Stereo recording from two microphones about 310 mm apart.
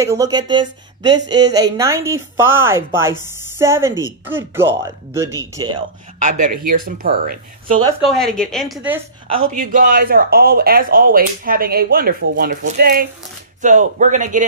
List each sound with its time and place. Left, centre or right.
0.0 s a woman's voice: centre
6.1 s speech: right
8.1 s a woman's voice: centre
9.5 s speech: right